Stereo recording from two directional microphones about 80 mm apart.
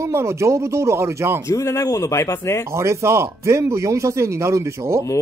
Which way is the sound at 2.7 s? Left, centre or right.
Right.